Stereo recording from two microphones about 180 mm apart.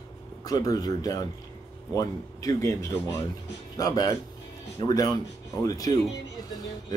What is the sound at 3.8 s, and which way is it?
Speech, 20° left (ahead or behind).